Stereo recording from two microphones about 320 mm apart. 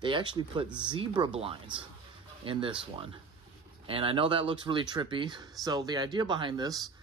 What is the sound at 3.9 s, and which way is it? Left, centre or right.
Speech, centre.